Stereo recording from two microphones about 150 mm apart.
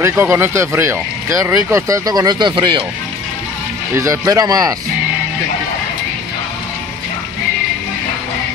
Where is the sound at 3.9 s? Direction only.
20° right (ahead or behind).